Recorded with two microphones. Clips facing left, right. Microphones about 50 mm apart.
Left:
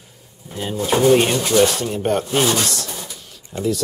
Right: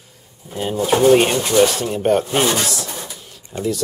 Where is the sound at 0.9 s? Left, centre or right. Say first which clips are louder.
Right 2 dB; centre.